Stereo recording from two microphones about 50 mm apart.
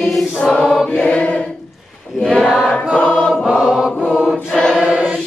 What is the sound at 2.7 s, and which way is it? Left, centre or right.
Choir, centre.